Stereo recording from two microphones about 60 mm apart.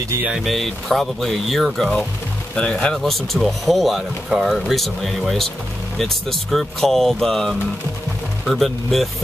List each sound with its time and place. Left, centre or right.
0.4 s speech: centre
3.0 s speech: centre